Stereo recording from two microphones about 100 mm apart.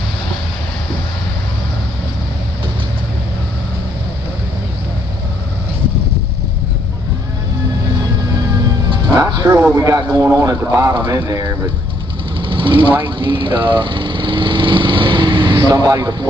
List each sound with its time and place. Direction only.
8.9 s music: 45° right (ahead or behind)
9.2 s music: 35° right (ahead or behind)
9.6 s a man's voice: 30° right (ahead or behind)
12.4 s vehicle: 55° right (ahead or behind)